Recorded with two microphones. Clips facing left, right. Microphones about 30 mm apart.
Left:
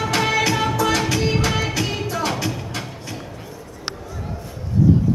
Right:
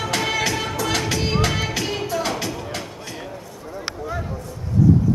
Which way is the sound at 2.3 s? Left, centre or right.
Left.